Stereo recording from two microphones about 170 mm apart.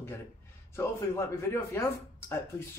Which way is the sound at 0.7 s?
15° left (ahead or behind).